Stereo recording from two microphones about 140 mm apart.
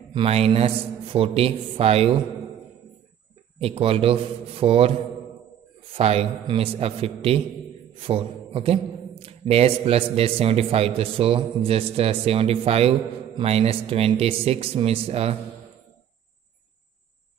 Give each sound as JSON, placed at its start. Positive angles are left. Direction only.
{"t": 0.1, "sound": "a man's voice", "side_deg": -45}
{"t": 3.5, "sound": "a man's voice", "side_deg": -45}